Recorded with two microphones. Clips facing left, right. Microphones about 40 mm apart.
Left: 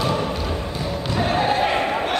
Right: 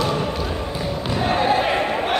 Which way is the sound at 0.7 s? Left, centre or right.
Centre.